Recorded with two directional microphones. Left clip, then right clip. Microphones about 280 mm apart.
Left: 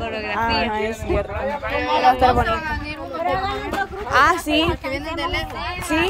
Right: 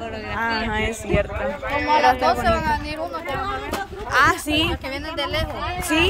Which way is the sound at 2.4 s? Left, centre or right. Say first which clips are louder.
Right 3 dB; right.